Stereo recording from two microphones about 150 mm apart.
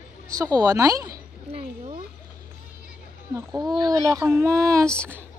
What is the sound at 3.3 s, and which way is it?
Speech, 25° right (ahead or behind).